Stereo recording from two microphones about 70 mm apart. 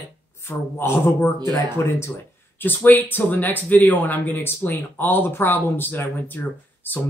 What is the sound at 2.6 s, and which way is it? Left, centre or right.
Speech, left.